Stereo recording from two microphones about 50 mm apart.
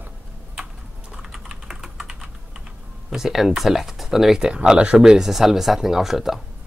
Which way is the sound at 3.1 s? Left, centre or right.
Centre.